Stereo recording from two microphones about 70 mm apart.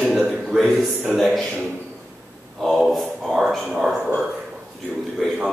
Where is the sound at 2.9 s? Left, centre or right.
Centre.